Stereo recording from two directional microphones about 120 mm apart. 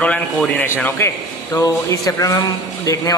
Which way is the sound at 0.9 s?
20° left (ahead or behind).